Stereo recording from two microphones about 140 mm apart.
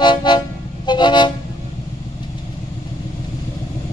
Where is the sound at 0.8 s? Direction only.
30° left (ahead or behind).